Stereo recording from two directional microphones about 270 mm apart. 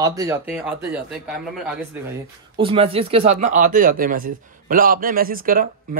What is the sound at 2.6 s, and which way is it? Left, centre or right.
Speech, right.